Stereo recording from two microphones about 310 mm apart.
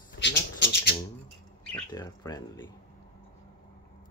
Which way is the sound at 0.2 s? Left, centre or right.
Left.